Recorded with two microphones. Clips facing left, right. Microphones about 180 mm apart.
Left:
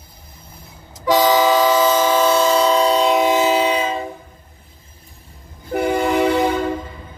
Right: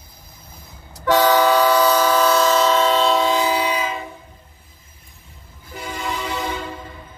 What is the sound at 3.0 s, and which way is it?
Train, 20° left (ahead or behind).